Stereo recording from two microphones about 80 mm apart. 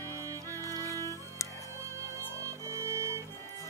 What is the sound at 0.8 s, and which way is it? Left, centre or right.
Music, left.